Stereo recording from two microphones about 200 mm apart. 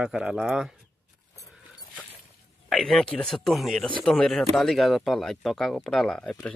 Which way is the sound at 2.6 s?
Centre (ahead or behind).